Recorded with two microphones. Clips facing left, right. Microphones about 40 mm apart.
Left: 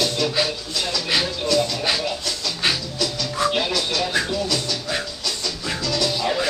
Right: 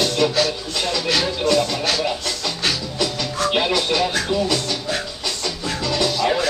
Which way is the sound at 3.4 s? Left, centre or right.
Right.